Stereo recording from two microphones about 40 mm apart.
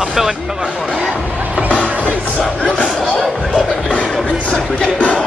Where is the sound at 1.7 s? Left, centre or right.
Left.